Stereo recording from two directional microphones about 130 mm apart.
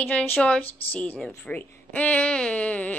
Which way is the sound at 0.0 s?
15° left (ahead or behind).